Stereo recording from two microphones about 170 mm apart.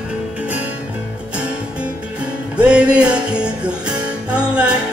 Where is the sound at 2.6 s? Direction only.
5° right (ahead or behind).